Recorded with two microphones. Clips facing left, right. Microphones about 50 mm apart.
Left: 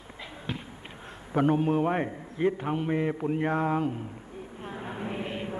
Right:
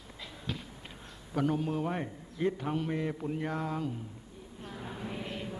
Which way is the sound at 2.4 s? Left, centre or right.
Left.